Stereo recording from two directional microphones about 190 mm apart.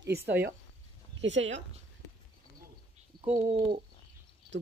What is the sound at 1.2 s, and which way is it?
Speech, 75° right (ahead or behind).